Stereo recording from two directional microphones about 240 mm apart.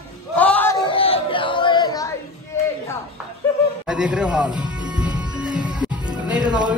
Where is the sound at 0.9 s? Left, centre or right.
Left.